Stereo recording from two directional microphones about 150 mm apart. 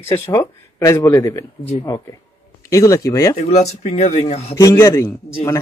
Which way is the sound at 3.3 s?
45° left (ahead or behind).